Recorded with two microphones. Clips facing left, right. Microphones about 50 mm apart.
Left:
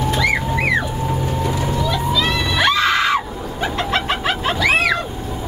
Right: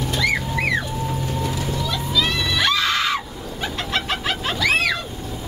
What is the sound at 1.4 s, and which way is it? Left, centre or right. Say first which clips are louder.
Screaming: left 5 dB; centre.